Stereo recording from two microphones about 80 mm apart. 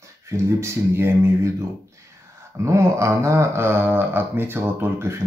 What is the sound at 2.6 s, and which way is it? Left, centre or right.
Speech, right.